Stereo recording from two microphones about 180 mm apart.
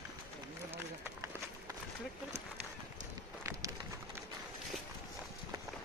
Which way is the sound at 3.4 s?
15° right (ahead or behind).